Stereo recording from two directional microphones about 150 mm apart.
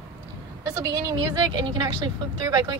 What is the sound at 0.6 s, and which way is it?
Speech, 20° right (ahead or behind).